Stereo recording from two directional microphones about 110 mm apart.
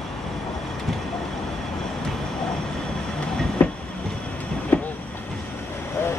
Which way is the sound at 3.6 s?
15° left (ahead or behind).